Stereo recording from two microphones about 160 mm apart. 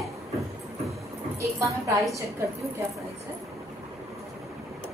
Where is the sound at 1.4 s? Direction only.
20° right (ahead or behind).